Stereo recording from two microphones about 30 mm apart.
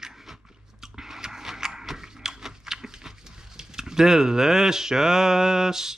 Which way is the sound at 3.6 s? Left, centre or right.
Right.